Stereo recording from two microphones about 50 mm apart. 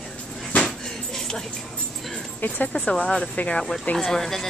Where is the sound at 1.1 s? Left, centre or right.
Centre.